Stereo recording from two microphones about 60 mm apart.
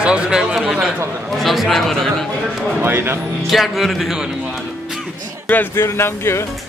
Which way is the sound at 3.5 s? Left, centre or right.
Centre.